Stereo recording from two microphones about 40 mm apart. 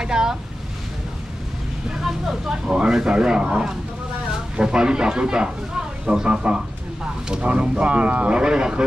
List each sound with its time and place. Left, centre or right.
0.0 s boat: centre
2.5 s speech: right
8.3 s speech: centre